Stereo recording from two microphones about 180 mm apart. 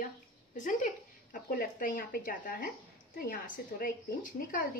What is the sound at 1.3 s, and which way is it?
Speech, 50° left (ahead or behind).